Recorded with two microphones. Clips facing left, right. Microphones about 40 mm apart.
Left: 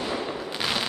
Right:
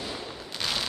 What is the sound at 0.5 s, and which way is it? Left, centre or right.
Fireworks, left.